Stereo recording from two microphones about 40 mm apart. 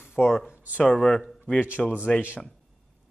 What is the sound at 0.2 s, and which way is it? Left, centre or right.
Speech, centre.